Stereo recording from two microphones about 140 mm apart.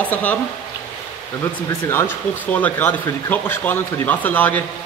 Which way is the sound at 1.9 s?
15° left (ahead or behind).